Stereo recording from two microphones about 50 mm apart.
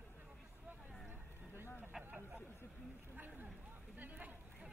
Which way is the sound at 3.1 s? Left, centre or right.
Right.